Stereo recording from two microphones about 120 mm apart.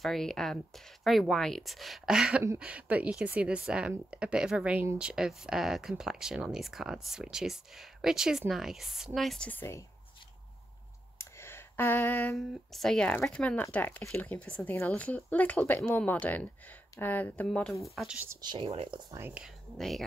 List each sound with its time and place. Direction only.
0.0 s speech: 5° left (ahead or behind)
9.5 s speech: 20° left (ahead or behind)
11.1 s a sound: 20° left (ahead or behind)
12.4 s speech: 5° left (ahead or behind)
18.4 s speech: 40° right (ahead or behind)
18.7 s speech: 50° right (ahead or behind)
19.3 s speech: centre (ahead or behind)